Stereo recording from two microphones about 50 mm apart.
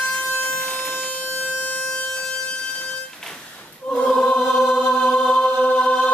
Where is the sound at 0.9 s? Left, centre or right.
Left.